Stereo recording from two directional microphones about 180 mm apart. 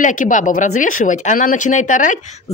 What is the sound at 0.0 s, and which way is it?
Speech, 45° left (ahead or behind).